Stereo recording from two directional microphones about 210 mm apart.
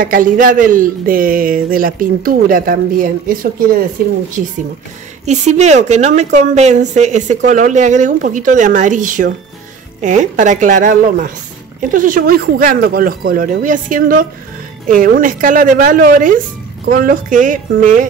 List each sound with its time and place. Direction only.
0.0 s a woman's voice: 40° right (ahead or behind)
5.2 s a woman's voice: 35° right (ahead or behind)